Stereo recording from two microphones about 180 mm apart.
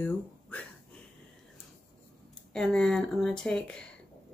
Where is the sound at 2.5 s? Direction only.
5° left (ahead or behind).